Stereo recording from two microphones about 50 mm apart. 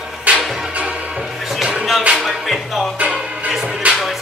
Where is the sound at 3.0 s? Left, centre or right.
Right.